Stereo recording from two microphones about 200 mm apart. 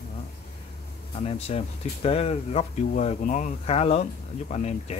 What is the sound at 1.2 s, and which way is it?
Speech, 30° left (ahead or behind).